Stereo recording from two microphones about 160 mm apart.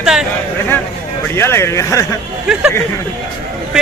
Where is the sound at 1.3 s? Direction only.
15° left (ahead or behind).